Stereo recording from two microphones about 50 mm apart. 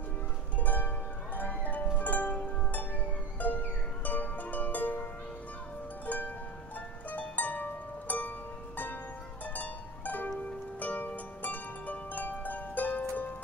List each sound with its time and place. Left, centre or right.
0.6 s music: left
6.0 s music: left